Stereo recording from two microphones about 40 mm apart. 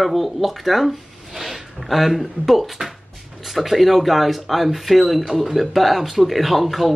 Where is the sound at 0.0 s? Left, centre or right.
Centre.